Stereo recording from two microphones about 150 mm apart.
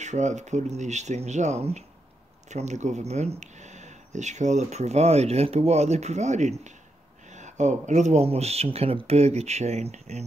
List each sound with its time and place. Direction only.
0.0 s speech: 50° right (ahead or behind)